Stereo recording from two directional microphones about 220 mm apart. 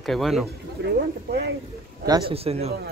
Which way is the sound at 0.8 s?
45° right (ahead or behind).